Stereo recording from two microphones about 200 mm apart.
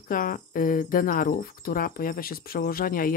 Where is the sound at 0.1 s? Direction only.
45° left (ahead or behind).